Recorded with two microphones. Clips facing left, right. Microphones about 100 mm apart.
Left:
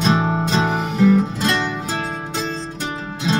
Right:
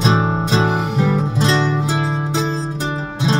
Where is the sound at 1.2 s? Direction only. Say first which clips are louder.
Right 2 dB; 20° right (ahead or behind).